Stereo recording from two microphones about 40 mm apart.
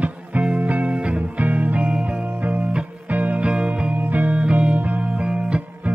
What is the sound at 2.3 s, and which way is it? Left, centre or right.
Music, right.